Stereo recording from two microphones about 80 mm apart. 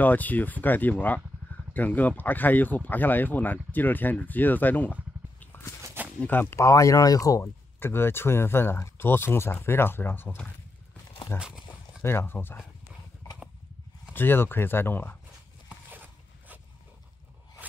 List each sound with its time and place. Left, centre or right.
0.0 s speech: left
5.4 s walk: left
6.0 s a sound: right
6.4 s speech: left
7.8 s speech: left
11.3 s horse: centre
12.0 s speech: left
14.1 s speech: left
15.9 s a sound: right